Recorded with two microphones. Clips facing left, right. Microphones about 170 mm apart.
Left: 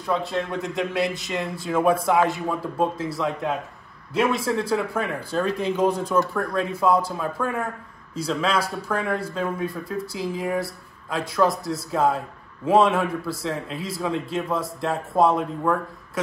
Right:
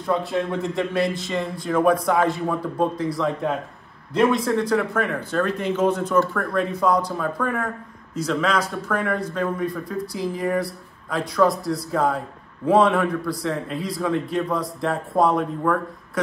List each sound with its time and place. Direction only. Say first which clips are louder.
0.2 s speech: right 3 dB; centre (ahead or behind)
5.8 s speech: right 2 dB; 35° left (ahead or behind)
6.4 s speech: right 1 dB; 5° left (ahead or behind)